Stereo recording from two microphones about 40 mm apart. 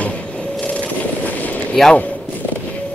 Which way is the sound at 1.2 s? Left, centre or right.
Left.